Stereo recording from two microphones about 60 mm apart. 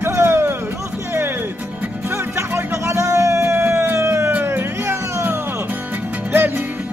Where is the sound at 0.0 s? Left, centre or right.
Right.